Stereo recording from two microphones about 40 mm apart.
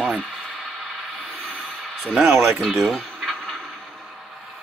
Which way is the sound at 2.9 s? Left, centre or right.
Centre.